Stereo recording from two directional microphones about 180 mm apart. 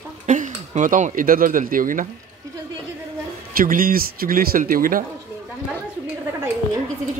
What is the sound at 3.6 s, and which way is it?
Speech, 50° right (ahead or behind).